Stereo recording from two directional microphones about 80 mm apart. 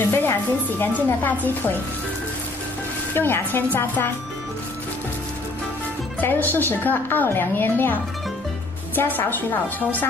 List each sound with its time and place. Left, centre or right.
0.1 s a woman's voice: left
3.2 s a woman's voice: left
6.2 s a woman's voice: left